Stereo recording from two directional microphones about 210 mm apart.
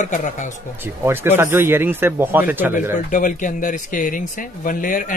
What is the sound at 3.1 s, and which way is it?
A man's voice, 40° left (ahead or behind).